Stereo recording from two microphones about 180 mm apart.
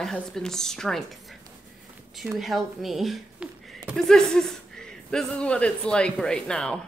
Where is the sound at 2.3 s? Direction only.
Centre (ahead or behind).